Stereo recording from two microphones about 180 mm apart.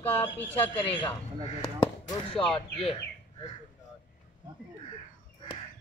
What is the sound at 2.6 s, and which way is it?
Speech, 30° left (ahead or behind).